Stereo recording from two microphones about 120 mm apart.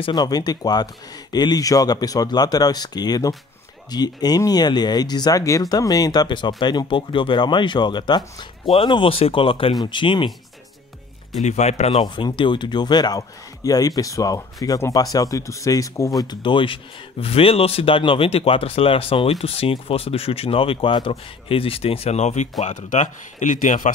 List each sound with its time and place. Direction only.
0.0 s speech: 35° left (ahead or behind)
11.4 s speech: 70° left (ahead or behind)
12.0 s speech: 40° left (ahead or behind)
16.2 s speech: 40° left (ahead or behind); by 23.9 s 90° left